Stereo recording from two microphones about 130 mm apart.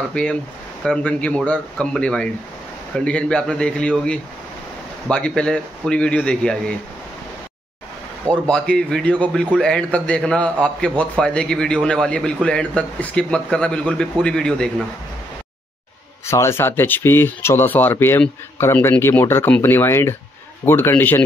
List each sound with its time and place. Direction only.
0.1 s a man's voice: 10° left (ahead or behind)
5.0 s a man's voice: 5° left (ahead or behind)
8.3 s a man's voice: 5° left (ahead or behind)
16.3 s a man's voice: 20° left (ahead or behind)